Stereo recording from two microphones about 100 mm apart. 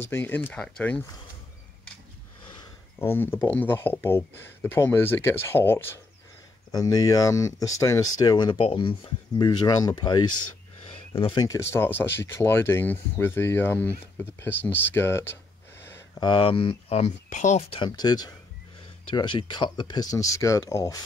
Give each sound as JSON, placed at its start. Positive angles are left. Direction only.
{"t": 0.0, "sound": "speech", "side_deg": 20}
{"t": 3.0, "sound": "speech", "side_deg": 20}
{"t": 6.7, "sound": "speech", "side_deg": 35}
{"t": 11.3, "sound": "speech", "side_deg": 35}
{"t": 16.2, "sound": "speech", "side_deg": 55}
{"t": 17.8, "sound": "speech", "side_deg": 45}